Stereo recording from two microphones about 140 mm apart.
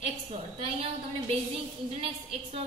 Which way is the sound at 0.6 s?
45° right (ahead or behind).